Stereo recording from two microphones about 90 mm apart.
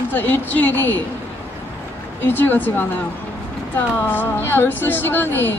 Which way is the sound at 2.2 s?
20° left (ahead or behind).